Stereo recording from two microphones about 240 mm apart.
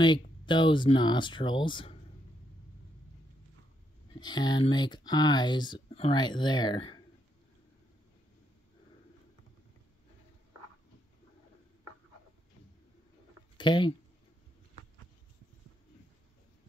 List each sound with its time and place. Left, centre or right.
0.0 s speech: centre
4.2 s speech: centre
13.6 s speech: centre